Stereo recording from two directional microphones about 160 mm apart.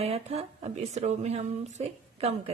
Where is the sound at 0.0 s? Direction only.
40° right (ahead or behind).